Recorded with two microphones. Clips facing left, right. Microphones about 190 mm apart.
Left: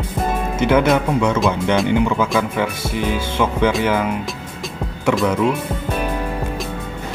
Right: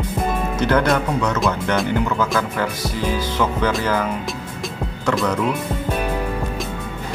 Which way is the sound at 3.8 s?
15° left (ahead or behind).